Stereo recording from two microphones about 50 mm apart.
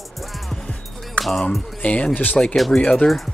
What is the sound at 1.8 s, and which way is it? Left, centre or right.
Speech, left.